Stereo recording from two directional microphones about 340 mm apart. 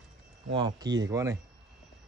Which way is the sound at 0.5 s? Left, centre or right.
Centre.